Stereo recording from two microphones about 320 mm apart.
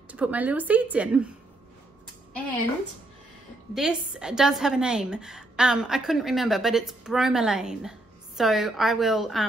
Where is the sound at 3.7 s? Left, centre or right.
Centre.